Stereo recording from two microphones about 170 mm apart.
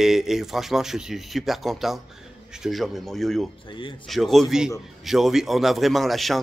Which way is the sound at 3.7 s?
30° left (ahead or behind).